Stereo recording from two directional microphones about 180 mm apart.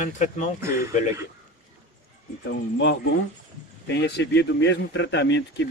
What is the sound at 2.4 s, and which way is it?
A man's voice, 70° left (ahead or behind).